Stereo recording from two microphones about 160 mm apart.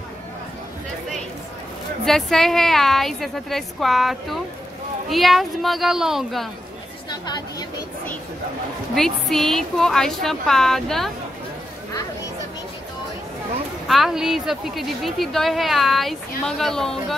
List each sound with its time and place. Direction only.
2.0 s speech: centre (ahead or behind)
7.1 s chatter: 25° left (ahead or behind)
8.9 s speech: 5° left (ahead or behind)
13.8 s speech: centre (ahead or behind)